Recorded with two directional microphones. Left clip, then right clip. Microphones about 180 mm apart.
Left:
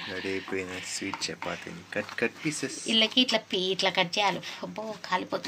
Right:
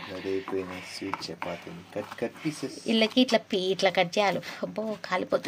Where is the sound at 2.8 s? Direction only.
55° right (ahead or behind).